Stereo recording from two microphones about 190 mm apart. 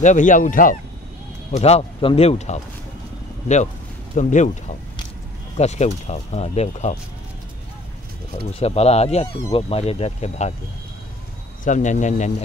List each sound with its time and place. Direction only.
0.0 s speech: 40° left (ahead or behind)
1.5 s speech: 35° left (ahead or behind)
4.1 s speech: 40° left (ahead or behind)
5.6 s speech: 35° left (ahead or behind)
8.5 s speech: 35° left (ahead or behind)
11.6 s speech: 40° left (ahead or behind)